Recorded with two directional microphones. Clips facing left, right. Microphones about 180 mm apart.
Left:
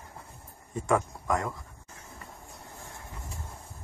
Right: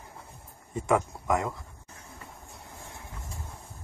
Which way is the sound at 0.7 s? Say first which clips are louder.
Right 1 dB; 20° right (ahead or behind).